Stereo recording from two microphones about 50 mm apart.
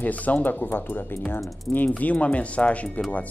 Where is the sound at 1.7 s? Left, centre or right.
Centre.